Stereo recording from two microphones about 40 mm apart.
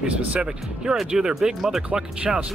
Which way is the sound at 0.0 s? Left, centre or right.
Right.